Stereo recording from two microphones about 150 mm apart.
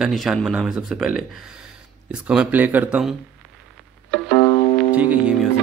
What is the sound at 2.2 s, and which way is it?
Speech, 10° right (ahead or behind).